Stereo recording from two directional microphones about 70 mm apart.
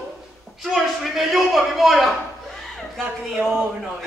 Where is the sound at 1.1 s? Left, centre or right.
Centre.